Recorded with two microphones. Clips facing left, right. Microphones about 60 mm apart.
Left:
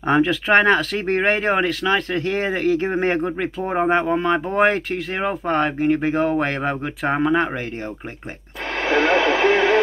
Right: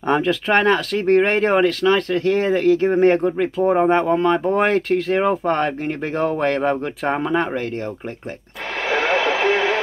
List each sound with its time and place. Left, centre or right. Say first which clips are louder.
0.1 s speech: left 1 dB; centre
3.7 s speech: even; centre
5.1 s speech: right 1 dB; centre
8.8 s radio: left 2 dB; centre